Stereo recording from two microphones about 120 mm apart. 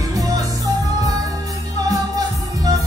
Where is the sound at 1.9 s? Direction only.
30° right (ahead or behind).